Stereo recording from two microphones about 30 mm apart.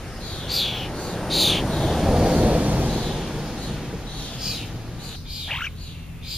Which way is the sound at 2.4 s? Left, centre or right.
Right.